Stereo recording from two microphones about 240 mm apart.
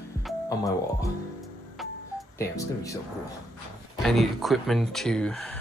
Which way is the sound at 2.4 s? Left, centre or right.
Centre.